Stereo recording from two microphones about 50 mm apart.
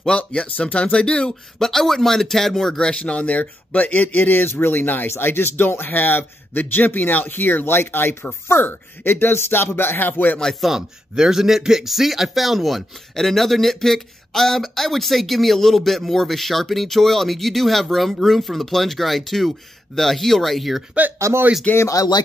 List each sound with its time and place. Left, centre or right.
0.2 s speech: left
0.9 s speech: centre
1.6 s a man's voice: centre
2.8 s a man's voice: centre; by 5.1 s left
5.1 s a man's voice: left
10.6 s speech: centre
21.3 s speech: right
21.7 s speech: left